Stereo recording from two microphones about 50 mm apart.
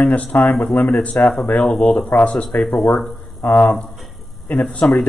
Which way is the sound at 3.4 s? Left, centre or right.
Left.